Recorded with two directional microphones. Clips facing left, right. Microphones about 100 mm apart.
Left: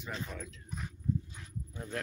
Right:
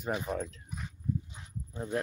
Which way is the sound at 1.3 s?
25° right (ahead or behind).